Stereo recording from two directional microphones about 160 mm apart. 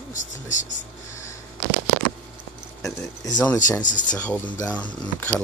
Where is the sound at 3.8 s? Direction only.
50° left (ahead or behind).